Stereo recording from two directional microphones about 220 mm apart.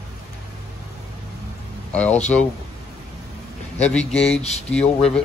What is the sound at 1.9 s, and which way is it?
Speech, 5° left (ahead or behind).